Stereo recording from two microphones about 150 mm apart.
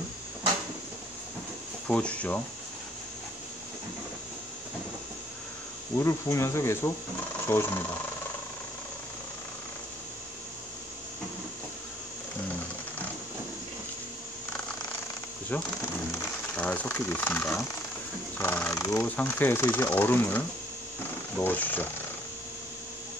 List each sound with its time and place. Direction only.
1.9 s speech: 10° left (ahead or behind)
5.9 s speech: 20° left (ahead or behind)
15.5 s speech: 10° left (ahead or behind)